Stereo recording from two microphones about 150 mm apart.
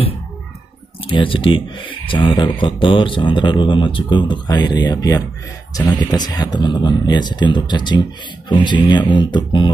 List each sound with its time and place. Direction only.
1.0 s speech: 35° left (ahead or behind)